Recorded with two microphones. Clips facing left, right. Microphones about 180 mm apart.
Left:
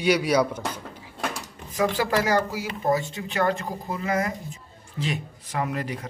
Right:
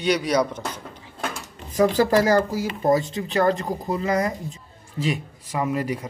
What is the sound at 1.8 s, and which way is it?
Speech, 40° right (ahead or behind).